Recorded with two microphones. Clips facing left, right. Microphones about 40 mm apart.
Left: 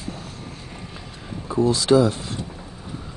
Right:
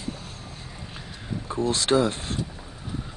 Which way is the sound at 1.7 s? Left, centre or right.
Right.